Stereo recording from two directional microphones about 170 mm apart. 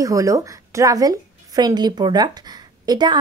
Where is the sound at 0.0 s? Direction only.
20° right (ahead or behind).